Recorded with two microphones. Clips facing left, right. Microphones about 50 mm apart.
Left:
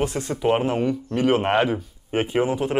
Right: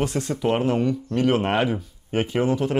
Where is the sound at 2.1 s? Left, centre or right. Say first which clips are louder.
Even; centre.